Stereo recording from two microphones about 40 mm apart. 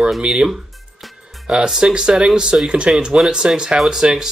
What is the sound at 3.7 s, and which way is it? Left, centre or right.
Speech, centre.